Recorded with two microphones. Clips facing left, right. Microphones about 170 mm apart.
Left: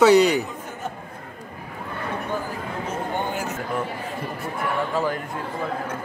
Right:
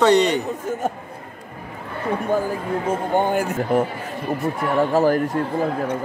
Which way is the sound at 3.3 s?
50° right (ahead or behind).